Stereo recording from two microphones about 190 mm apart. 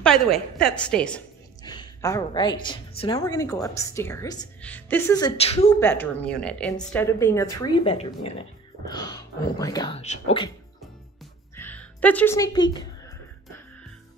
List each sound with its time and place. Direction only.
0.0 s a woman's voice: centre (ahead or behind)
1.6 s a woman's voice: 20° left (ahead or behind)
5.4 s speech: 35° left (ahead or behind)
5.7 s a woman's voice: 10° left (ahead or behind)
11.5 s music: 10° left (ahead or behind)